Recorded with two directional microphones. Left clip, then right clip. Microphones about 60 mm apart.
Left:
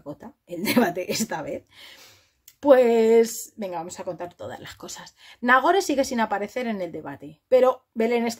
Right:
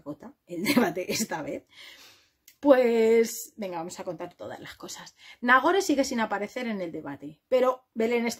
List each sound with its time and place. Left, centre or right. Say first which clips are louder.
0.2 s speech: left 2 dB; left; by 4.3 s centre
4.4 s speech: left 3 dB; left